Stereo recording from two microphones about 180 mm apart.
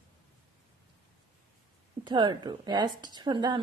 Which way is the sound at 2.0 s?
25° right (ahead or behind).